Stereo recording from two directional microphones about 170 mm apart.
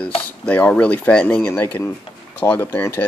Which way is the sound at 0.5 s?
10° left (ahead or behind).